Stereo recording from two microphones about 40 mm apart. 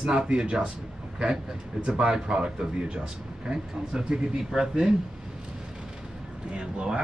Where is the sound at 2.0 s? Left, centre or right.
Right.